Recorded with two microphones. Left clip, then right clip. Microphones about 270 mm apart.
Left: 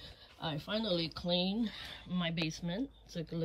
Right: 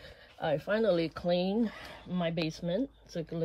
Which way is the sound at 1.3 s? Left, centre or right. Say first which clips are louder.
Right 4 dB; centre.